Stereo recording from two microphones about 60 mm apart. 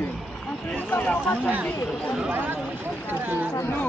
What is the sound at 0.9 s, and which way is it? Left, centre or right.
Speech, left.